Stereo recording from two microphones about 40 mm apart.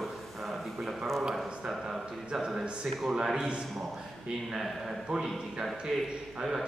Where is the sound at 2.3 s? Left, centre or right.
Centre.